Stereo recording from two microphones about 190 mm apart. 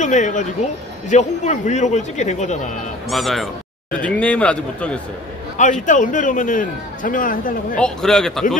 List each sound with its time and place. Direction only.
0.0 s a man's voice: 40° left (ahead or behind)
3.1 s a man's voice: centre (ahead or behind)
5.6 s a man's voice: 40° left (ahead or behind)
7.8 s a man's voice: centre (ahead or behind)